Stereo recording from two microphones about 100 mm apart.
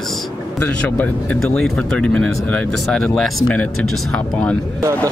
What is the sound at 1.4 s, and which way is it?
Speech, 5° left (ahead or behind).